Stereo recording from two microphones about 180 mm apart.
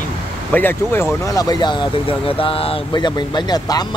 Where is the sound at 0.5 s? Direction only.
10° left (ahead or behind).